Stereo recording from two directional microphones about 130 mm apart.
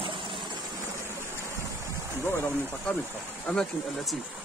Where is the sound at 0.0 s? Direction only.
40° right (ahead or behind).